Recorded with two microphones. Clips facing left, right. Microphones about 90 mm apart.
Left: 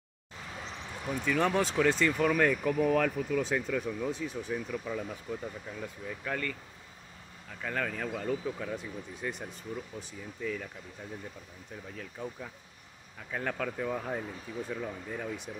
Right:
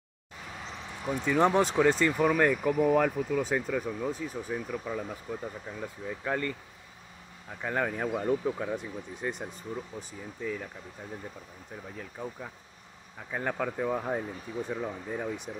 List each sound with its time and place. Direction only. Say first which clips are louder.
1.0 s speech: right 4 dB; 20° right (ahead or behind)
12.0 s speech: right 1 dB; 15° right (ahead or behind)